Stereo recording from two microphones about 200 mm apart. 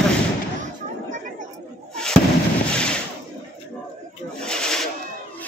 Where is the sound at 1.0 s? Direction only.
40° right (ahead or behind).